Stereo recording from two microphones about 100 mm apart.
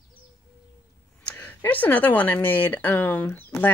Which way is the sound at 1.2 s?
15° left (ahead or behind).